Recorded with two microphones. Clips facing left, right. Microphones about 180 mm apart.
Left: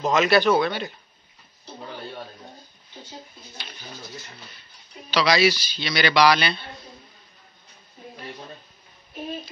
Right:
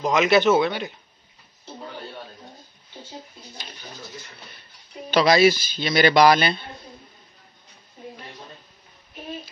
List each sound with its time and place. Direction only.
0.0 s a man's voice: 15° right (ahead or behind)
5.1 s a man's voice: 50° right (ahead or behind)